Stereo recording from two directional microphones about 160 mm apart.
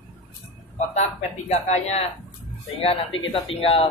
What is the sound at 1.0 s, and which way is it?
Speech, 40° left (ahead or behind).